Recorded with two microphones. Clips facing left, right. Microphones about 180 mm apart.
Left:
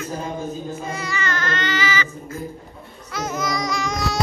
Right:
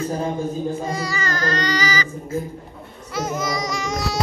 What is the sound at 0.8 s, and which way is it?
Baby cry, 35° right (ahead or behind).